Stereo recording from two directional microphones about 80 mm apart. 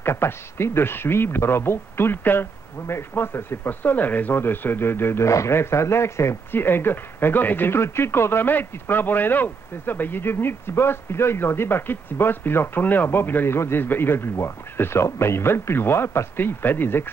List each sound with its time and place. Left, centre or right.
0.0 s speech: left